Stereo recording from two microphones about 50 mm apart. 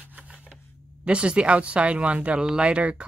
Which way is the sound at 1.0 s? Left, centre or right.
Right.